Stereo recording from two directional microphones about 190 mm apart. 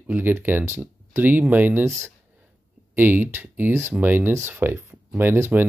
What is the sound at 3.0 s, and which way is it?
Speech, 10° right (ahead or behind).